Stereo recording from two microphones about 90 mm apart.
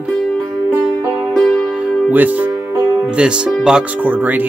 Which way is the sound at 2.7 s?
30° right (ahead or behind).